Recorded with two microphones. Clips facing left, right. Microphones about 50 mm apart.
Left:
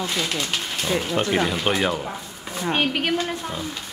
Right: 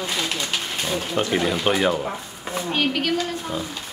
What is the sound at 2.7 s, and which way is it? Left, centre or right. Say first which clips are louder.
Speech: even; left.